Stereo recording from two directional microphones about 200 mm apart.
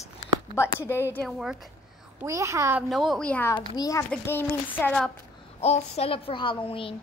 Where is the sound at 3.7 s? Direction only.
15° left (ahead or behind).